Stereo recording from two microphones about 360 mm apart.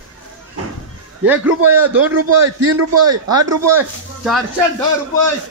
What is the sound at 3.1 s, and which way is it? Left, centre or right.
Speech, centre.